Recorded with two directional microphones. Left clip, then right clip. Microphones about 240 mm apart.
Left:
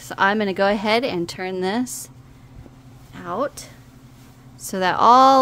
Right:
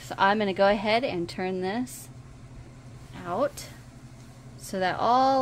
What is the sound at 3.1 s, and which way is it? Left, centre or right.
Speech, centre.